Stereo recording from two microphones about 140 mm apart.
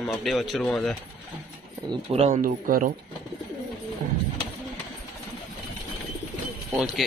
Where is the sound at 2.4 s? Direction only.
80° right.